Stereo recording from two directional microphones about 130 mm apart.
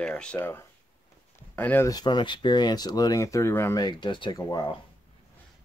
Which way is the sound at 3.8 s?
35° left (ahead or behind).